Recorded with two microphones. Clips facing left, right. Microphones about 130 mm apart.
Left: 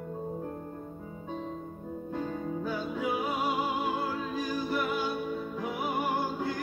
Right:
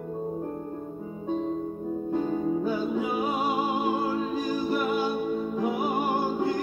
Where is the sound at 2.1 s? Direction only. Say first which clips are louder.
Right 7 dB; 20° right (ahead or behind).